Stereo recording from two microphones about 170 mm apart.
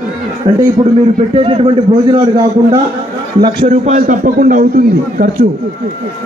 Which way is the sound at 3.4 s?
35° right (ahead or behind).